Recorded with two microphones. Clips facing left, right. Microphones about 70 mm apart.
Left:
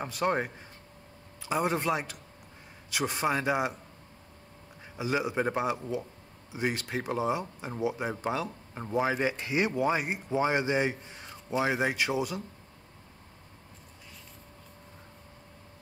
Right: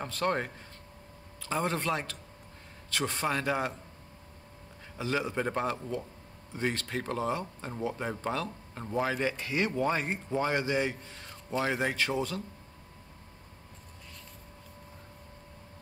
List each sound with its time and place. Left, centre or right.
0.0 s speech: centre
4.9 s speech: centre